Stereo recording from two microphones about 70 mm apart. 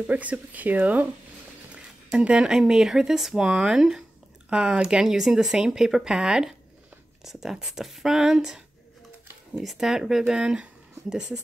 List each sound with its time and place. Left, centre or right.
0.0 s speech: right
2.0 s speech: centre